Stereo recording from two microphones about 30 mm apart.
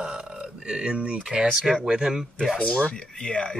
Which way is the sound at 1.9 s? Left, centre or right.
Right.